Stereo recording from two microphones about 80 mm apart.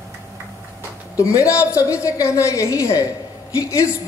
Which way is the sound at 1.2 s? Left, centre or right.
Left.